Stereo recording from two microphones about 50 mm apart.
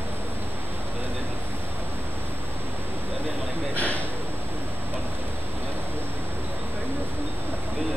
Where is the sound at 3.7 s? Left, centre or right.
Left.